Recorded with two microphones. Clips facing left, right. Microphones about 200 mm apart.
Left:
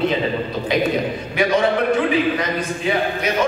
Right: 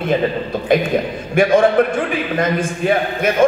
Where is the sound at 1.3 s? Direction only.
50° right (ahead or behind).